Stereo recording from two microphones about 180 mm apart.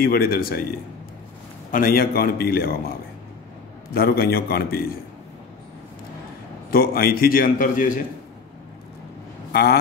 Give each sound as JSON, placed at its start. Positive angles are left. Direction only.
{"t": 0.0, "sound": "a man's voice", "side_deg": 55}
{"t": 1.7, "sound": "a man's voice", "side_deg": 50}
{"t": 3.9, "sound": "a man's voice", "side_deg": 55}
{"t": 6.7, "sound": "a man's voice", "side_deg": 55}
{"t": 9.5, "sound": "speech", "side_deg": 60}